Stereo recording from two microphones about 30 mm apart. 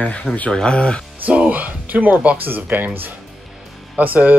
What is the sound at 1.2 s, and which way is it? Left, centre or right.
Speech, right.